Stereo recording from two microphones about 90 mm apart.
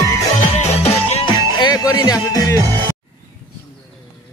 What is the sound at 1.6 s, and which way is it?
Speech, 50° left (ahead or behind).